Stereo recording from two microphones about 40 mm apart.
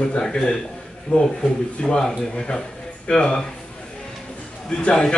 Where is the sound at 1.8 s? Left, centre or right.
Centre.